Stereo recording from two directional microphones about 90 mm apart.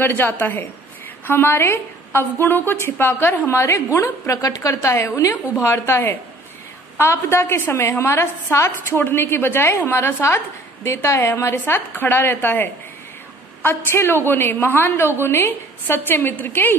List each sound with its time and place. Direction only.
0.0 s a woman's voice: 20° left (ahead or behind)